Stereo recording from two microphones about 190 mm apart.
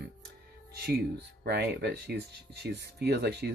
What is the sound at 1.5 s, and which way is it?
Speech, 60° right (ahead or behind).